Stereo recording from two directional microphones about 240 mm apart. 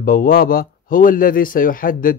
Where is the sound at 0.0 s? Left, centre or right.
Left.